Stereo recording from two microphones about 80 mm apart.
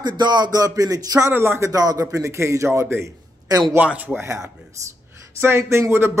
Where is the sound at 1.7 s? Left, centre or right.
Right.